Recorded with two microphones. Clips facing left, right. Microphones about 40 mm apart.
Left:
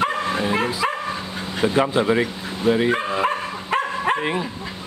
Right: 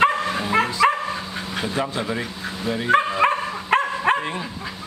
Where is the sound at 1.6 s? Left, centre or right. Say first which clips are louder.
Left 7 dB; left.